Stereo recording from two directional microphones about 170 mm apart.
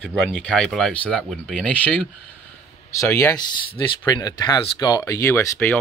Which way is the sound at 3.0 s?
15° left (ahead or behind).